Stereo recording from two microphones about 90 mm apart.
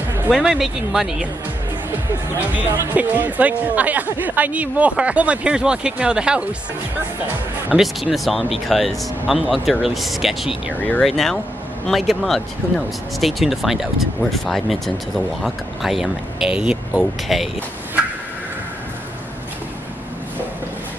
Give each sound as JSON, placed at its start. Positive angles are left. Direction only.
{"t": 0.3, "sound": "speech", "side_deg": -5}
{"t": 2.9, "sound": "speech", "side_deg": -20}
{"t": 7.7, "sound": "speech", "side_deg": 0}
{"t": 10.8, "sound": "speech", "side_deg": 20}
{"t": 11.1, "sound": "speech", "side_deg": 5}